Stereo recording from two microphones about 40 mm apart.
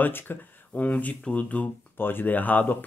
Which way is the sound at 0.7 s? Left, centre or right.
Left.